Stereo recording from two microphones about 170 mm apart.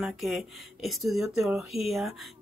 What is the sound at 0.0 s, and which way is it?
Speech, centre (ahead or behind).